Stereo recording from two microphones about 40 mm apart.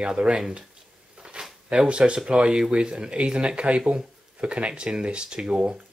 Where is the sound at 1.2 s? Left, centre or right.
Right.